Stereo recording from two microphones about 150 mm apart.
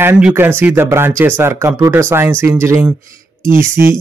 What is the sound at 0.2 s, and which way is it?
A man's voice, 15° right (ahead or behind).